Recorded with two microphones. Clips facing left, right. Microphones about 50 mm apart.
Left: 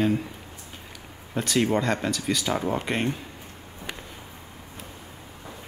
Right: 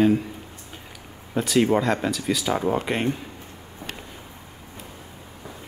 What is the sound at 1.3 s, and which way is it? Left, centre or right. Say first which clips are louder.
Speech: right 4 dB; centre.